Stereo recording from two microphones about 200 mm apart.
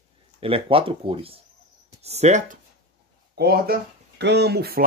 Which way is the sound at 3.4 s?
50° right (ahead or behind).